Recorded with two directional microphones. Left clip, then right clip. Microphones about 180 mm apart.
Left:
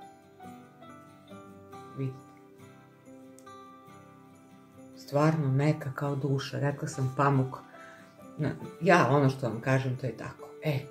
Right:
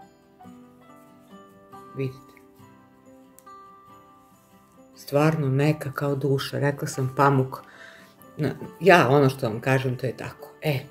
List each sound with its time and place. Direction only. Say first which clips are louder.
4.9 s speech: right 5 dB; 45° right (ahead or behind)